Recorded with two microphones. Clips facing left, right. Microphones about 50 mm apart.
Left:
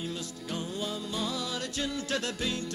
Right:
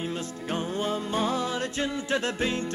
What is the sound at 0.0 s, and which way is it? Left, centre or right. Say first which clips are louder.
Music: right 5 dB; right.